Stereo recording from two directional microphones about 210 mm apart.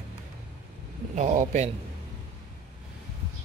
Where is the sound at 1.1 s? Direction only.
35° right (ahead or behind).